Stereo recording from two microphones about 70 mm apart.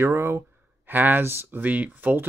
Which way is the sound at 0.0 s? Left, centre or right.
Right.